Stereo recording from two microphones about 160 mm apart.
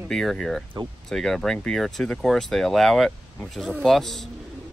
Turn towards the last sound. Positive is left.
turn(degrees=0)  # may be behind; listen again after turning